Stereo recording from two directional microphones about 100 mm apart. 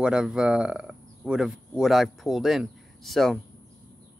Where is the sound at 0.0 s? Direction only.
10° right (ahead or behind).